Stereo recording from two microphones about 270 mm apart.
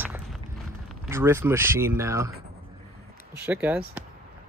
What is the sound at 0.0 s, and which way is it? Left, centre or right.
Walk, centre.